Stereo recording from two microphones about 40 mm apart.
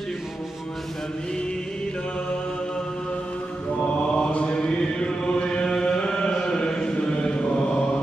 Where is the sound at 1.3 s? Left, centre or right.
Left.